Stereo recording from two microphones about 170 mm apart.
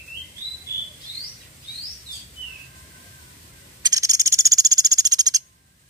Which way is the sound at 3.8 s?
20° right (ahead or behind).